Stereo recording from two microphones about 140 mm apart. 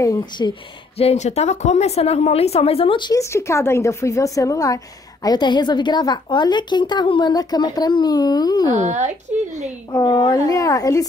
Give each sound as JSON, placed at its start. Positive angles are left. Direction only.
{"t": 0.0, "sound": "a woman's voice", "side_deg": 30}
{"t": 0.9, "sound": "a woman's voice", "side_deg": 50}
{"t": 3.2, "sound": "a woman's voice", "side_deg": 20}
{"t": 8.7, "sound": "speech", "side_deg": -55}
{"t": 9.9, "sound": "a woman's voice", "side_deg": 30}